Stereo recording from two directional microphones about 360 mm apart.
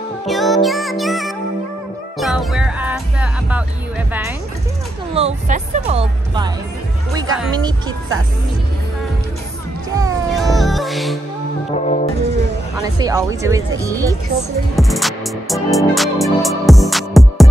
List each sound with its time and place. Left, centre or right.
0.3 s music: centre
5.1 s speech: centre
9.9 s music: centre
11.7 s music: centre
13.0 s speech: centre
14.8 s music: centre